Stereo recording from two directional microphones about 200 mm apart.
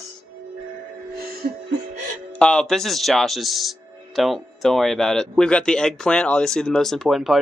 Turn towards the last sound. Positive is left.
turn(degrees=0)  # may be behind; listen again after turning